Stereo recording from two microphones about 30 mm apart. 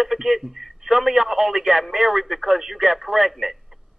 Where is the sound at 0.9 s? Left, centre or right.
Right.